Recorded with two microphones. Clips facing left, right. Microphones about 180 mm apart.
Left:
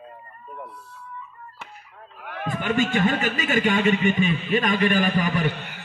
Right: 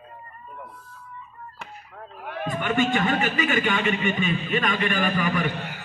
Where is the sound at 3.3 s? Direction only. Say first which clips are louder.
Left 2 dB; 35° left (ahead or behind).